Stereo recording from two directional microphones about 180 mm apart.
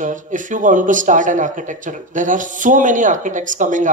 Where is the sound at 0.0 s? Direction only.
45° right (ahead or behind).